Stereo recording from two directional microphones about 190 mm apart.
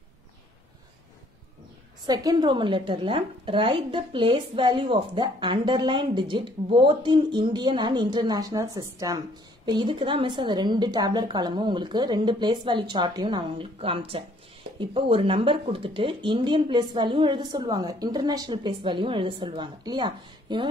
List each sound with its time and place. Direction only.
2.0 s a woman's voice: 20° right (ahead or behind)